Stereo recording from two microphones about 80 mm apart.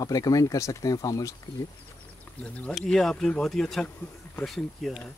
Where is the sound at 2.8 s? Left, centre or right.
Centre.